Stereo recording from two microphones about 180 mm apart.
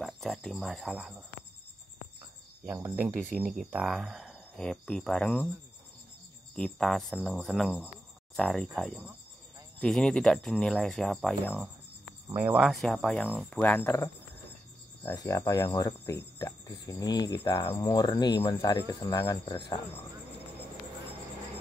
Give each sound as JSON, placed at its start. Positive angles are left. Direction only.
{"t": 0.0, "sound": "speech", "side_deg": 0}
{"t": 2.6, "sound": "speech", "side_deg": -10}
{"t": 3.2, "sound": "speech", "side_deg": 0}
{"t": 6.5, "sound": "speech", "side_deg": 5}
{"t": 12.4, "sound": "speech", "side_deg": -10}
{"t": 13.6, "sound": "speech", "side_deg": 10}